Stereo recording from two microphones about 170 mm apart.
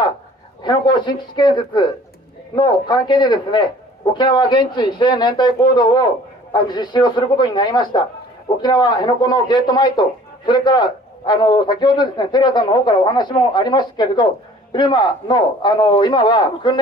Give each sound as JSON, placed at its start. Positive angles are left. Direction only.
{"t": 0.7, "sound": "a man's voice", "side_deg": 25}